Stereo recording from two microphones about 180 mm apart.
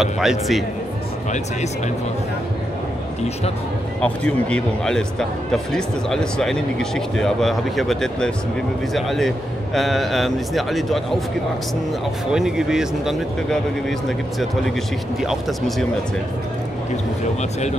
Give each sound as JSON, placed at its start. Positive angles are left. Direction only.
{"t": 0.0, "sound": "speech", "side_deg": 0}
{"t": 4.0, "sound": "speech", "side_deg": 5}
{"t": 12.3, "sound": "speech", "side_deg": -5}
{"t": 17.4, "sound": "speech", "side_deg": 40}